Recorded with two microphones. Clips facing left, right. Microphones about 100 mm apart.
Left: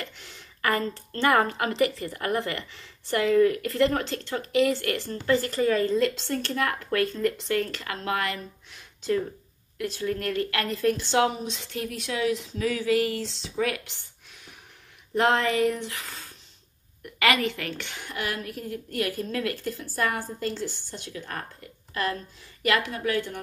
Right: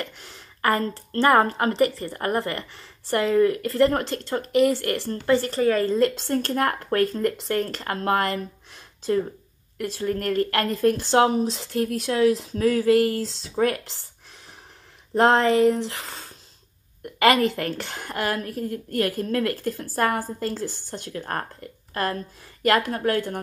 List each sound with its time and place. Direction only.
0.2 s a woman's voice: 40° right (ahead or behind)
15.1 s a woman's voice: 35° right (ahead or behind)